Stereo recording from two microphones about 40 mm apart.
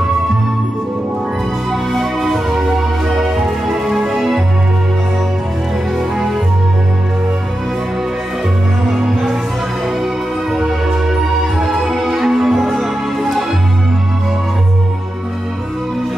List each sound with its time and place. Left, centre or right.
1.7 s music: centre
11.7 s music: centre